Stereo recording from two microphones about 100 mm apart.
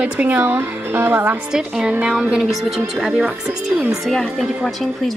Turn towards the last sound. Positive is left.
turn(degrees=5)  # may be behind; listen again after turning